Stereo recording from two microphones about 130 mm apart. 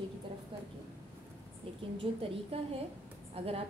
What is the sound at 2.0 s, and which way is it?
Speech, 45° right (ahead or behind).